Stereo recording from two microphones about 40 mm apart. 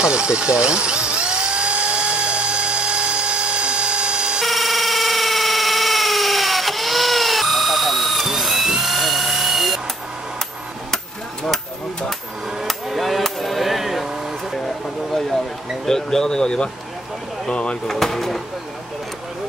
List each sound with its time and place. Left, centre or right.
0.0 s drill: right
4.4 s cacophony: centre
12.6 s a sound: centre
15.1 s a sound: centre
15.8 s speech: centre
17.8 s speech: centre